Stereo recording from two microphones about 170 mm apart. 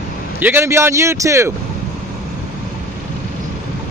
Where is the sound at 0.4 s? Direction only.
15° right (ahead or behind).